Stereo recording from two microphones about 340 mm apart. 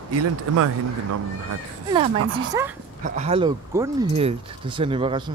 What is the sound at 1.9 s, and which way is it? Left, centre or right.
Speech, centre.